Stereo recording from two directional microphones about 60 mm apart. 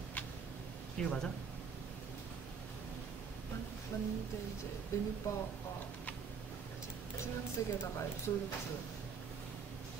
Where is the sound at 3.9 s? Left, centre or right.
Left.